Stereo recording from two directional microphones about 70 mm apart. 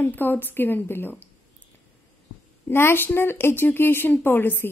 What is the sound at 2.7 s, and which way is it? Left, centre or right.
A woman's voice, left.